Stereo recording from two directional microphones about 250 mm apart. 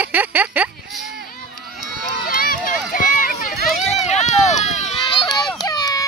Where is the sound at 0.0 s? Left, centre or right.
Centre.